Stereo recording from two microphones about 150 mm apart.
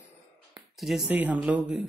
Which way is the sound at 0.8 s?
Centre (ahead or behind).